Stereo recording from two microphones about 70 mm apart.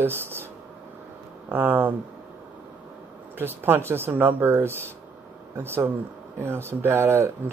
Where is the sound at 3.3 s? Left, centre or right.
Right.